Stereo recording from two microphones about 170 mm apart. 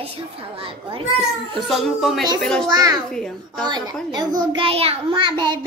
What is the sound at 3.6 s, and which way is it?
A child's voice, 25° right (ahead or behind).